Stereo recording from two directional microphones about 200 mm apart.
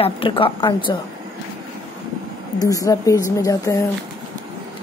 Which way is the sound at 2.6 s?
15° left (ahead or behind).